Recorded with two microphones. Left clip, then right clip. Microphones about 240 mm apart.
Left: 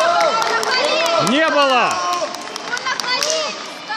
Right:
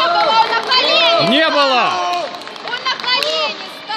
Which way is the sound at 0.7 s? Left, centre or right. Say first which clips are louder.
Right 5 dB; right.